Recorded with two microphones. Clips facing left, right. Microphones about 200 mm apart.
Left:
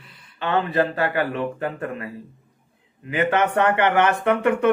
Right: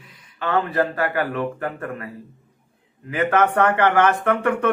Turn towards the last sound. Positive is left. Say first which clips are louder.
# left 1 dB
turn(degrees=15)  # may be behind; listen again after turning